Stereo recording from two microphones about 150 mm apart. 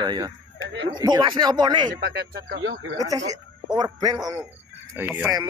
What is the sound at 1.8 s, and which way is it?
Speech, 90° right.